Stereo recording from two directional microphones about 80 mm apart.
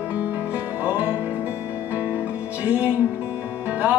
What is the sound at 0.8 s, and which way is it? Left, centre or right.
Music, centre.